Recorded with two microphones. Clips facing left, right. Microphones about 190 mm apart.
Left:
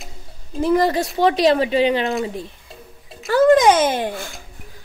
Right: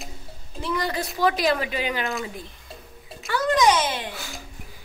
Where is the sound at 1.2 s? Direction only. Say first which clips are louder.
Left 6 dB; 35° left (ahead or behind).